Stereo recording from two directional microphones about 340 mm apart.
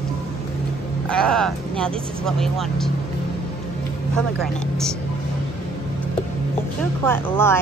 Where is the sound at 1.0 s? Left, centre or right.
Centre.